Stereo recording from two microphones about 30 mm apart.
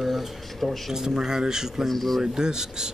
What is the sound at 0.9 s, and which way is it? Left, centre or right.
Speech, centre.